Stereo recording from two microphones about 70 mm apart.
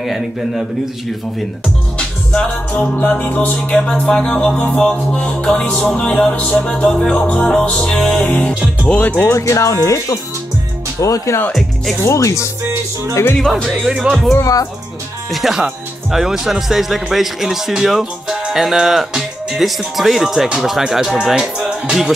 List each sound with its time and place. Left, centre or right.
0.0 s speech: centre
2.5 s music: centre
8.2 s speech: centre
9.3 s speech: left
11.5 s speech: centre
12.0 s speech: left
13.4 s speech: centre
14.4 s speech: left
15.3 s speech: centre